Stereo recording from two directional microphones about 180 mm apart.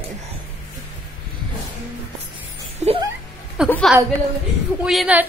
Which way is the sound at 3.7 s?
Centre (ahead or behind).